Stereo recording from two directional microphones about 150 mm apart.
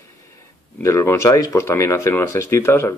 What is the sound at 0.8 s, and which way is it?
Speech, 15° left (ahead or behind).